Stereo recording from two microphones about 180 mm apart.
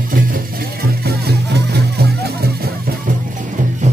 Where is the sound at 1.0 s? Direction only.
60° right (ahead or behind).